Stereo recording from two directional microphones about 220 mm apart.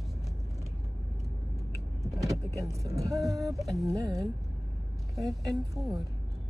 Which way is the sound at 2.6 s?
15° right (ahead or behind).